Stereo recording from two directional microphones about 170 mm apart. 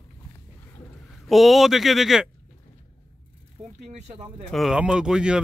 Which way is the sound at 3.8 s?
40° right (ahead or behind).